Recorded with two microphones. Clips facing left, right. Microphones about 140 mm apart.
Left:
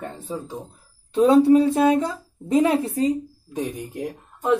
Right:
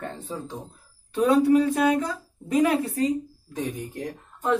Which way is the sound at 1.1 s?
25° left (ahead or behind).